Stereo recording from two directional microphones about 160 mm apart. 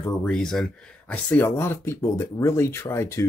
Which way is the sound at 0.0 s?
5° left (ahead or behind).